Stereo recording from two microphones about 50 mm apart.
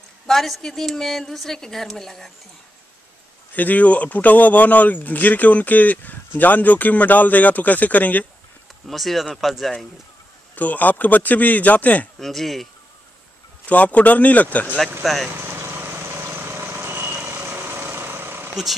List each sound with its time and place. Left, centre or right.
0.3 s a woman's voice: centre
3.5 s speech: left
8.8 s a woman's voice: centre
10.5 s speech: left
12.2 s a woman's voice: centre
13.7 s speech: left
15.3 s vehicle: right
18.5 s speech: centre